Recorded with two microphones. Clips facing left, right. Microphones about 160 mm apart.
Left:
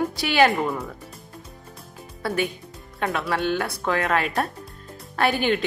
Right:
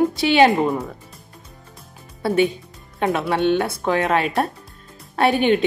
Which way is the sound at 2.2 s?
25° right (ahead or behind).